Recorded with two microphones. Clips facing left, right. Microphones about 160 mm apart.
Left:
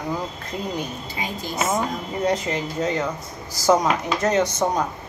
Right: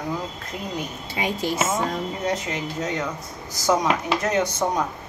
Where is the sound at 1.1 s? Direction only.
70° right (ahead or behind).